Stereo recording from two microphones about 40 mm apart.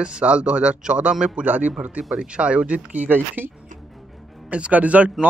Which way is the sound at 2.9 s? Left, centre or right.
Right.